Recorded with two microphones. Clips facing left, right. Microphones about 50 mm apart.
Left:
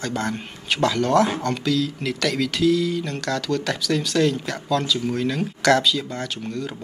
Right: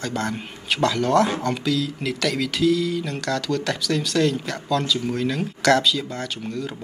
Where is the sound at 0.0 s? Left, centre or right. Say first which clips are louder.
Even; centre.